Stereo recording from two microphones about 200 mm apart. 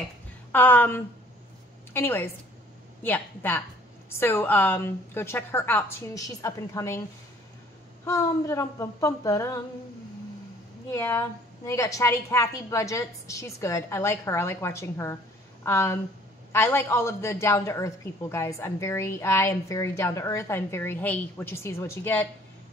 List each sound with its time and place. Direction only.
0.5 s a man's voice: 10° left (ahead or behind)
8.0 s a man's voice: 15° left (ahead or behind)
10.9 s a man's voice: 15° left (ahead or behind)